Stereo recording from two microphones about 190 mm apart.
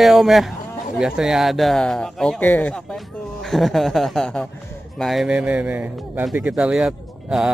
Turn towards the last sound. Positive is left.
turn(degrees=-5)  # may be behind; listen again after turning